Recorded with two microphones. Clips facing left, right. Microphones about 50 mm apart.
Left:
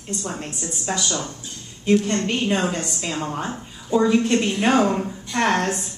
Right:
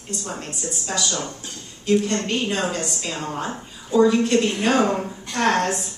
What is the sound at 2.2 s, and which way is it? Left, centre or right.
Speech, centre.